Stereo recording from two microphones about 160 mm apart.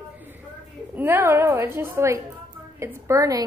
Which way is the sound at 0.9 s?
15° right (ahead or behind).